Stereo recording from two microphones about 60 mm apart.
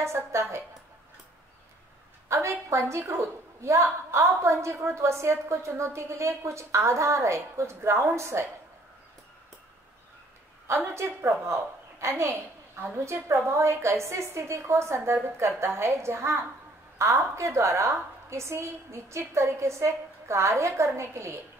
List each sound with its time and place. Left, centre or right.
0.0 s a woman's voice: right
2.2 s a woman's voice: right
11.0 s a woman's voice: right